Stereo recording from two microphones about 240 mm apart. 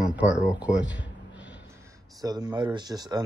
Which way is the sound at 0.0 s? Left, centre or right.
Centre.